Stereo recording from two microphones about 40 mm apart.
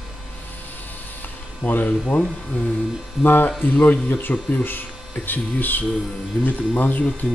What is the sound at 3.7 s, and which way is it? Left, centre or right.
Speech, left.